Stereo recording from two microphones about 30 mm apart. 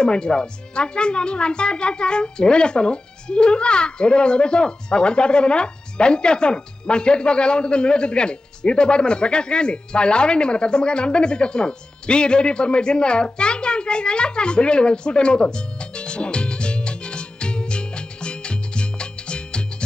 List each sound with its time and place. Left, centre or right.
0.0 s speech: left